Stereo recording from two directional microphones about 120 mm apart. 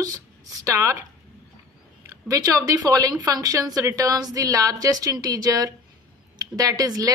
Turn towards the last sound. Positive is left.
turn(degrees=-30)  # may be behind; listen again after turning